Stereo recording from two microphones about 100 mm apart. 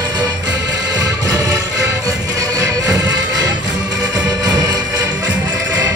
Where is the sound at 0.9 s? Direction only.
40° right (ahead or behind).